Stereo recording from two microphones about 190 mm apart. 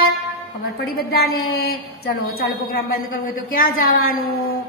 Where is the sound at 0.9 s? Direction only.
55° left (ahead or behind).